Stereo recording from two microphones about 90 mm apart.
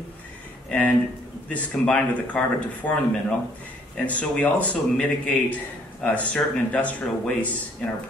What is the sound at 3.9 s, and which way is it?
Speech, 15° left (ahead or behind).